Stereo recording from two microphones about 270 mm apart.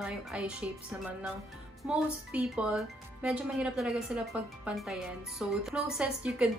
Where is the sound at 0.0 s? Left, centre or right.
Centre.